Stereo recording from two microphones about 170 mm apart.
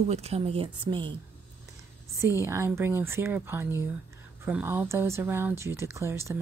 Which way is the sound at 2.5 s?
15° right (ahead or behind).